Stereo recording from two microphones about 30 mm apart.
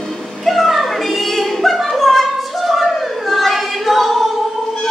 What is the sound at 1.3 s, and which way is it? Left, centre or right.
Music, centre.